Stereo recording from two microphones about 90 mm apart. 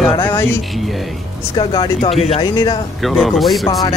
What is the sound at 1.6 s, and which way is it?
Speech, 65° left (ahead or behind).